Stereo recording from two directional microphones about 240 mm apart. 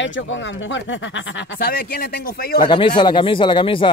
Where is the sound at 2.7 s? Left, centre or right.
Left.